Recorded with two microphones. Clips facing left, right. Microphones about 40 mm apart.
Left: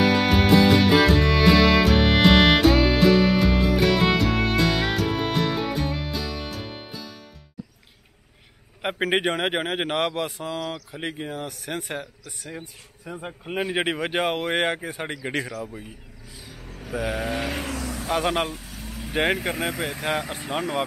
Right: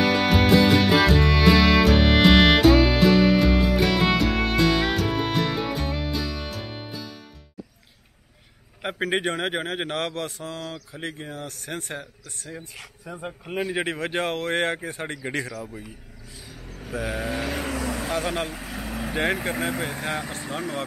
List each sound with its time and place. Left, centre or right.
0.0 s music: centre
8.8 s a sound: centre
9.1 s speech: centre
13.0 s speech: centre
16.4 s vehicle: centre
18.1 s speech: centre
18.8 s vehicle: right
19.8 s speech: centre